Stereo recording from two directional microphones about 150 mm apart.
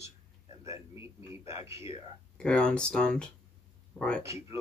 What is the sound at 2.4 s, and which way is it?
Speech, 5° left (ahead or behind).